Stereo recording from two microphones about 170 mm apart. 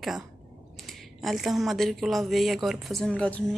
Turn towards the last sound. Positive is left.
turn(degrees=5)  # may be behind; listen again after turning